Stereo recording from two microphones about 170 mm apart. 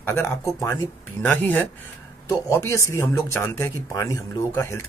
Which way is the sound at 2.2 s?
15° left (ahead or behind).